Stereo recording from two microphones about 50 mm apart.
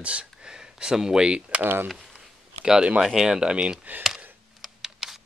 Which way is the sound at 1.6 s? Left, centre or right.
Right.